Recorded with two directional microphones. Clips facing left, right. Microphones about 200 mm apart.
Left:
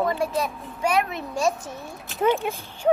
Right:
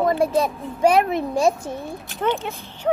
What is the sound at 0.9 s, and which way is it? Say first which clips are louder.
Speech: right 6 dB; 55° right (ahead or behind).